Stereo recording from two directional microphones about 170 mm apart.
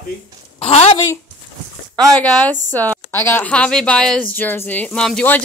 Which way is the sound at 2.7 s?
10° left (ahead or behind).